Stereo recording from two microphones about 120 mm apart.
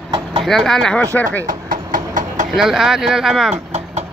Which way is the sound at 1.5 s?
90° right.